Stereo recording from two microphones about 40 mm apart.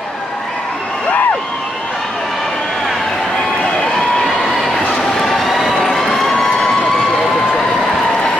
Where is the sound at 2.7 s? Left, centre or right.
Centre.